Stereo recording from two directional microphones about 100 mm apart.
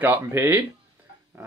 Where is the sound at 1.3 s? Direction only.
20° right (ahead or behind).